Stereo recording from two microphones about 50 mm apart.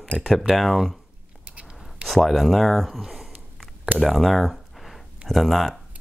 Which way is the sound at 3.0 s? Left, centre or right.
Centre.